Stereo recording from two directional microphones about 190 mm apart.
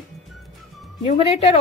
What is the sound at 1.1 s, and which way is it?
Speech, 30° left (ahead or behind).